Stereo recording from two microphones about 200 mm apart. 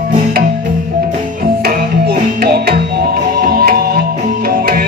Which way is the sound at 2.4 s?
50° right (ahead or behind).